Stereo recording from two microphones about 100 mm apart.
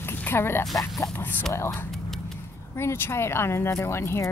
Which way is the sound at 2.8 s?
25° left (ahead or behind).